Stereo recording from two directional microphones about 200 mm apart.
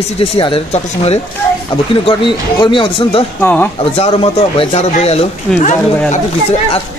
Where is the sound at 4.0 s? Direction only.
30° left (ahead or behind).